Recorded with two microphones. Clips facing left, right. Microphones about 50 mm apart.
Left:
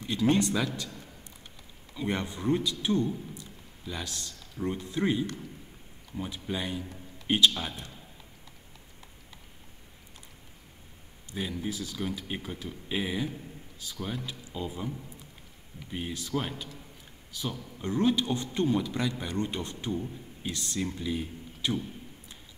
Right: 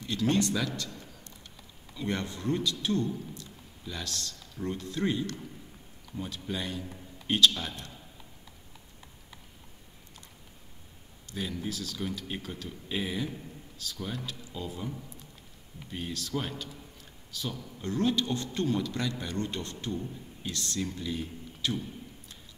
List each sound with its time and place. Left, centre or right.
0.0 s a man's voice: centre
11.2 s speech: centre
15.9 s speech: centre